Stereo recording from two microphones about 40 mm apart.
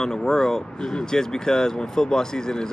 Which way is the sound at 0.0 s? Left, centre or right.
Centre.